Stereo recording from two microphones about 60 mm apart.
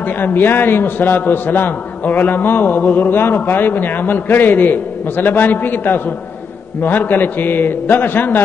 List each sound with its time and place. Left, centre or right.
0.2 s a man's voice: left